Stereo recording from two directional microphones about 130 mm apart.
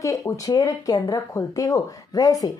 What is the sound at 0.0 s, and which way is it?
Speech, 25° left (ahead or behind).